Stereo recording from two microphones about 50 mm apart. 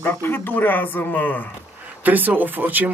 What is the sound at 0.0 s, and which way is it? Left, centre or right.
Speech, left.